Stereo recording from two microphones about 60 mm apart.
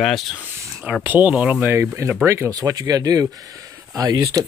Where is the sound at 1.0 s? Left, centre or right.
Right.